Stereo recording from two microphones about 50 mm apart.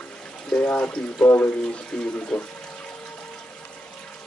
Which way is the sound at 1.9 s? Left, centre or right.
Centre.